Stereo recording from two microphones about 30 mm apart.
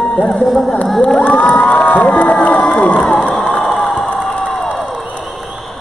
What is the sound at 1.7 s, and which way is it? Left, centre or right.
Crowd, left.